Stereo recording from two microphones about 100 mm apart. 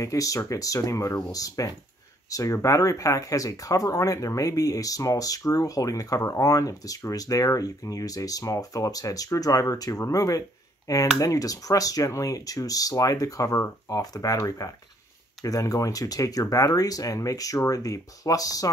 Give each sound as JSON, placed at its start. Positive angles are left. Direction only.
{"t": 0.0, "sound": "speech", "side_deg": 35}